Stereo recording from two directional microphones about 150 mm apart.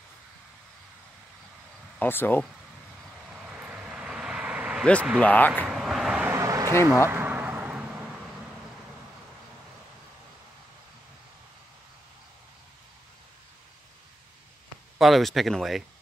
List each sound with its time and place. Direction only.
2.0 s speech: 15° left (ahead or behind)
3.3 s vehicle: 5° right (ahead or behind)
5.2 s speech: 10° left (ahead or behind)
5.7 s vehicle: centre (ahead or behind)
6.3 s a sound: 20° right (ahead or behind)
6.7 s speech: 15° left (ahead or behind)
7.1 s vehicle: 15° right (ahead or behind)
15.0 s speech: centre (ahead or behind)